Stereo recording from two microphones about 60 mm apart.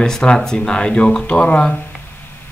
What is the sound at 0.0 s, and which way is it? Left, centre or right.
Speech, centre.